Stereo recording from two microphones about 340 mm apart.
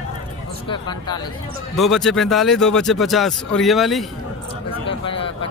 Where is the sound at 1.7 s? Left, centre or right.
Centre.